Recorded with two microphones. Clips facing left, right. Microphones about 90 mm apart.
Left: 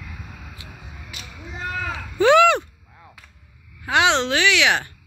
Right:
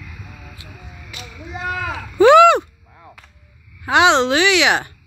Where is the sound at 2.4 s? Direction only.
15° right (ahead or behind).